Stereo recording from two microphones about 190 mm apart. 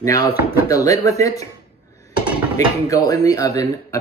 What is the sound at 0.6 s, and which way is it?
Speech, 15° left (ahead or behind).